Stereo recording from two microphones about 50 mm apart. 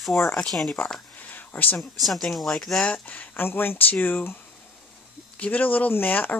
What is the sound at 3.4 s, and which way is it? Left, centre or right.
Speech, left.